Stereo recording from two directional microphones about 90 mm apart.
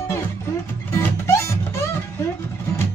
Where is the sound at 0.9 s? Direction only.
30° left (ahead or behind).